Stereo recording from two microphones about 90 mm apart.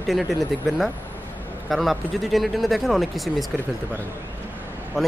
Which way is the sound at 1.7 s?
Centre (ahead or behind).